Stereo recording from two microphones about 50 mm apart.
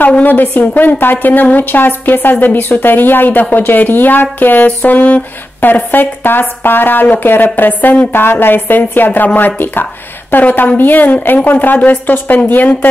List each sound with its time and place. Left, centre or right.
0.2 s speech: left
8.1 s a woman's voice: left